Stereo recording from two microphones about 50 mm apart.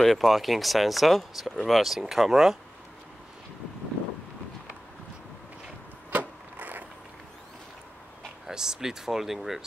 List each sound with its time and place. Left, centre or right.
0.0 s speech: centre
6.1 s a sound: right
8.5 s speech: centre